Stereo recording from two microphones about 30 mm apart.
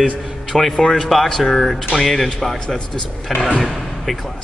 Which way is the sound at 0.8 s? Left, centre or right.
Left.